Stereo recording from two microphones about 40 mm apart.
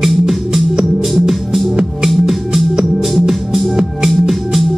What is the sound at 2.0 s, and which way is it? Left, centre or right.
Music, centre.